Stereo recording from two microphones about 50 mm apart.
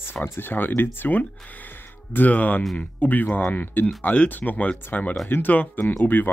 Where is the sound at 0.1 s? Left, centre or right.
Left.